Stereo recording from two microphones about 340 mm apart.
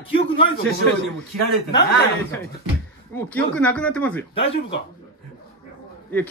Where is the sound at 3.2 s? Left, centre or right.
Centre.